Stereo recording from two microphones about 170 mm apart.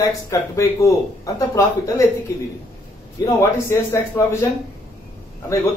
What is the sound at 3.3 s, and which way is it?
Speech, 15° left (ahead or behind).